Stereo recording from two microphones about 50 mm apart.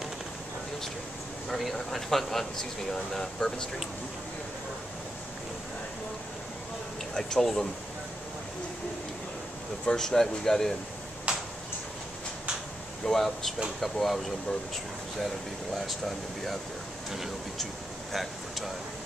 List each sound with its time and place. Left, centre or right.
1.6 s speech: centre
7.2 s speech: centre
9.8 s speech: centre
11.3 s tick-tock: right
13.0 s speech: centre
15.7 s speech: centre
17.1 s speech: centre
18.1 s a sound: centre